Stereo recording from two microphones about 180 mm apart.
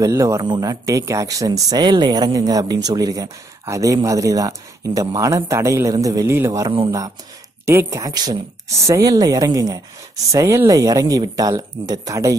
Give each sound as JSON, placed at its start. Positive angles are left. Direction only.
{"t": 0.0, "sound": "speech", "side_deg": -15}